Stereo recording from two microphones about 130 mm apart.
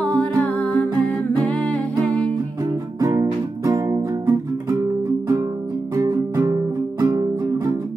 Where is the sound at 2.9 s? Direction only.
25° right (ahead or behind).